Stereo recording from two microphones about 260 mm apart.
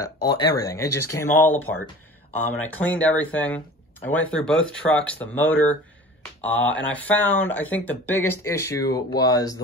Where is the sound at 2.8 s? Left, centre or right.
Centre.